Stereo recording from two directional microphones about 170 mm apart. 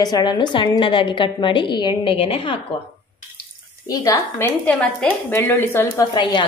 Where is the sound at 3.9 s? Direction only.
20° left (ahead or behind).